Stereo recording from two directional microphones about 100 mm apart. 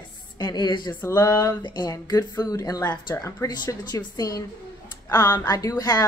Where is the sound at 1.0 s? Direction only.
35° left (ahead or behind).